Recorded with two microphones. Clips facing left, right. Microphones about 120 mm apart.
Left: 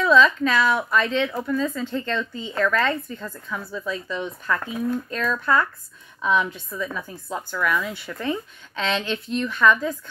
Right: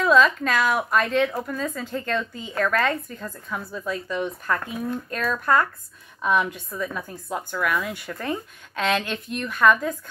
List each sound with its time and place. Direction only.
0.0 s a woman's voice: 45° right (ahead or behind)